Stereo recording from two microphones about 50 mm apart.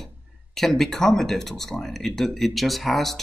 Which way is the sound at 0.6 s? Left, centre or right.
Centre.